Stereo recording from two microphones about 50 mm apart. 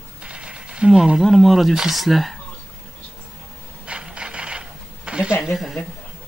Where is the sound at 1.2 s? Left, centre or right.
Centre.